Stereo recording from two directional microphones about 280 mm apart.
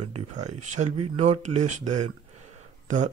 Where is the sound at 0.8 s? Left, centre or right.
Right.